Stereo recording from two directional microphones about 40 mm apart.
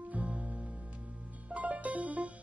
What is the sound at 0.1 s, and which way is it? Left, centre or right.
Music, right.